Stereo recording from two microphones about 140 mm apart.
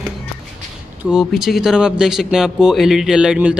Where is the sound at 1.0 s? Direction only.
Centre (ahead or behind).